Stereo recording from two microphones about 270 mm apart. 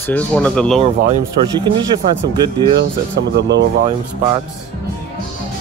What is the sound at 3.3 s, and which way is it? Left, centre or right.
Speech, right.